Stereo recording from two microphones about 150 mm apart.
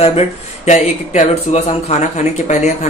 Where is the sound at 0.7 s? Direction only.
50° left (ahead or behind).